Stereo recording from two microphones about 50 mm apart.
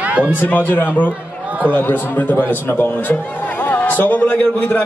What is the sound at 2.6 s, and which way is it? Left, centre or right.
A man's voice, left.